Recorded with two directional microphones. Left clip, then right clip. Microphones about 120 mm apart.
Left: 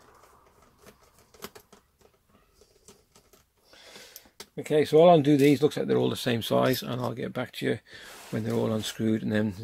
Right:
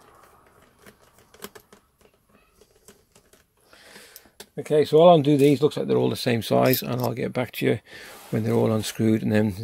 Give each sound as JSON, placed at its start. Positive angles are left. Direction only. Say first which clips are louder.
{"t": 4.6, "sound": "speech", "louder": "right 3 dB", "side_deg": -20}
{"t": 6.1, "sound": "speech", "louder": "right 4 dB", "side_deg": -25}
{"t": 7.2, "sound": "speech", "louder": "right 6 dB", "side_deg": -50}